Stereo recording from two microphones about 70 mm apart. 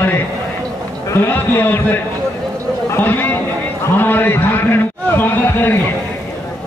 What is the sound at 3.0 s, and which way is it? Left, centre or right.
A man's voice, left.